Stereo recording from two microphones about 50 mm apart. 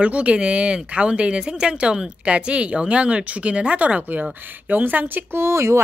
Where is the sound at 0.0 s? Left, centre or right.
Right.